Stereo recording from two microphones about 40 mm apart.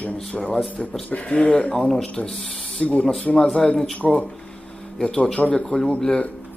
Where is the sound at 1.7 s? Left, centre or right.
Centre.